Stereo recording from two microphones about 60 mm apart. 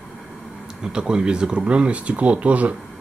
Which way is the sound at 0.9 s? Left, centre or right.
Centre.